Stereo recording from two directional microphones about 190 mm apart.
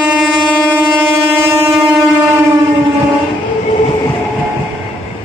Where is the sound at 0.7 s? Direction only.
10° right (ahead or behind).